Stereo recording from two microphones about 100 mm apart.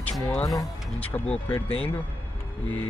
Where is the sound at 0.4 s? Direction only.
35° left (ahead or behind).